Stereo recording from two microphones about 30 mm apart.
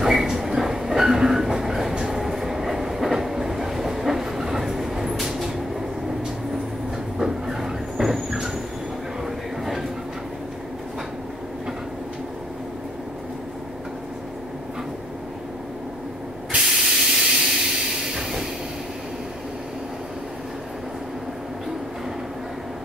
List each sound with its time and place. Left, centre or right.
0.0 s train: centre
5.1 s vehicle: centre
7.2 s vehicle: centre
9.2 s train: centre
16.7 s steam: centre